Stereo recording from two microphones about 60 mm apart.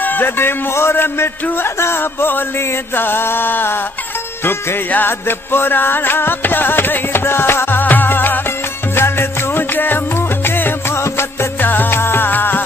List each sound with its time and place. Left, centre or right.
0.2 s music: left
9.6 s music: left
11.6 s music: left